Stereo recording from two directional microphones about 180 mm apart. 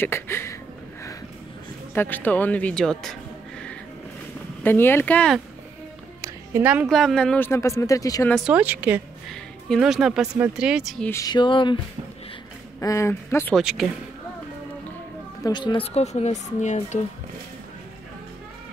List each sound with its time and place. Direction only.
0.0 s speech: 15° left (ahead or behind)
2.0 s speech: 10° left (ahead or behind)
6.2 s speech: 10° right (ahead or behind); by 8.3 s 20° left (ahead or behind)
8.5 s speech: 10° right (ahead or behind)
11.1 s a sound: 20° left (ahead or behind)
12.8 s speech: 15° left (ahead or behind)
13.6 s speech: centre (ahead or behind)
15.4 s speech: 25° left (ahead or behind); by 17.0 s 40° left (ahead or behind)